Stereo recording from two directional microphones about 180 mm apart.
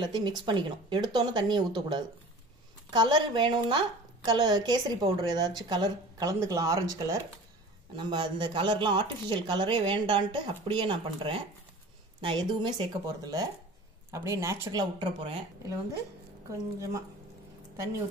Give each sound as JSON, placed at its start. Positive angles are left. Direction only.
{"t": 0.0, "sound": "speech", "side_deg": -25}